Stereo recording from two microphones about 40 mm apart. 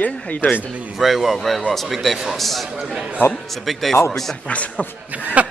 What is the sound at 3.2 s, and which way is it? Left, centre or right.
Speech, left.